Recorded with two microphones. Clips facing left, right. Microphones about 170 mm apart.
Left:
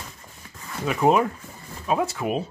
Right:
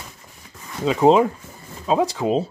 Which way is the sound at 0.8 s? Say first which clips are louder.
Right 5 dB; 20° right (ahead or behind).